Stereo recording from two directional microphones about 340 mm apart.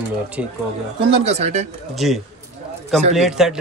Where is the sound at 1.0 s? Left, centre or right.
Centre.